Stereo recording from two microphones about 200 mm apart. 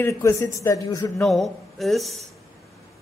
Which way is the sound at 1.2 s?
Centre (ahead or behind).